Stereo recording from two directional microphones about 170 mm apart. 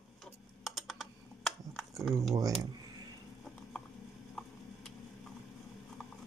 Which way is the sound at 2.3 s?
20° right (ahead or behind).